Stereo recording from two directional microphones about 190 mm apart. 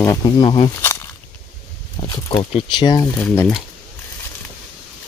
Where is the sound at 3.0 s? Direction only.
10° left (ahead or behind).